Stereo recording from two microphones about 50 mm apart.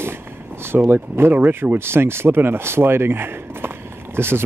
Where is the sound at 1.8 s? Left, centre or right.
Right.